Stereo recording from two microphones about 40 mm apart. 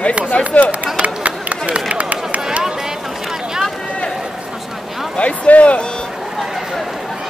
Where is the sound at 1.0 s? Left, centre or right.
Right.